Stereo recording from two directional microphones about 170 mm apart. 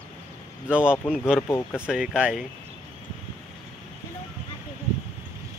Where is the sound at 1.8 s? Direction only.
5° right (ahead or behind).